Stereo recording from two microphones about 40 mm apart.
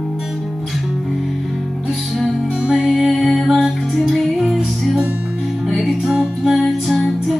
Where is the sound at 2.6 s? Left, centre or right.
Right.